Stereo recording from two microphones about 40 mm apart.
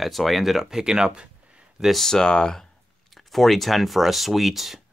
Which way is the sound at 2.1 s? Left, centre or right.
Centre.